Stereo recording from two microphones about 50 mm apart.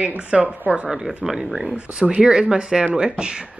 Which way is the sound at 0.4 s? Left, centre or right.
Right.